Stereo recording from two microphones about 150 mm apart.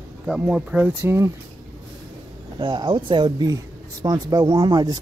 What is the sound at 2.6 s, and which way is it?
Speech, 30° right (ahead or behind).